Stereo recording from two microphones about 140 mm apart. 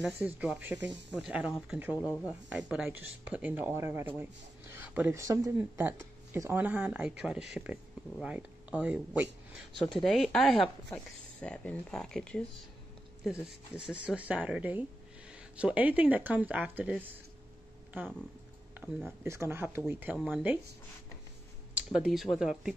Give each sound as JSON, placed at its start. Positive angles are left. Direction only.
{"t": 0.4, "sound": "speech", "side_deg": -10}
{"t": 2.0, "sound": "speech", "side_deg": 20}
{"t": 2.5, "sound": "speech", "side_deg": -5}
{"t": 5.1, "sound": "speech", "side_deg": -20}
{"t": 13.2, "sound": "speech", "side_deg": -5}
{"t": 19.2, "sound": "speech", "side_deg": -20}
{"t": 21.9, "sound": "speech", "side_deg": 0}